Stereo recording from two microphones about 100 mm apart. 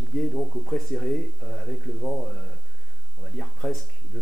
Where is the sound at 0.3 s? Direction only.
5° left (ahead or behind).